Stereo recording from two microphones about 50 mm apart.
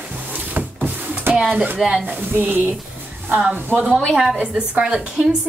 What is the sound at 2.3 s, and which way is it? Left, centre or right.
Speech, right.